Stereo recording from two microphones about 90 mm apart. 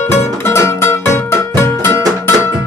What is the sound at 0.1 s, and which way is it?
Music, 30° left (ahead or behind).